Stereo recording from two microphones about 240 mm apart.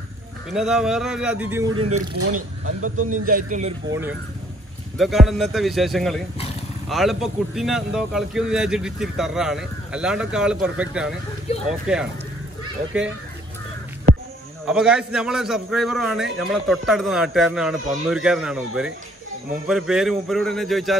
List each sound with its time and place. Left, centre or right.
0.5 s a man's voice: centre
1.8 s a man's voice: right
3.1 s a man's voice: right
3.9 s a man's voice: centre
14.7 s a man's voice: centre